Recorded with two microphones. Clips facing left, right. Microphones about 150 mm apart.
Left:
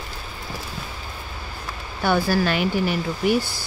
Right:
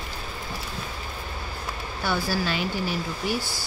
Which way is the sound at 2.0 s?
55° left (ahead or behind).